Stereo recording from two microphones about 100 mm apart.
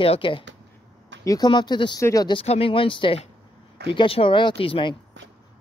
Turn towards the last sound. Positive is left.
turn(degrees=60)  # may be behind; listen again after turning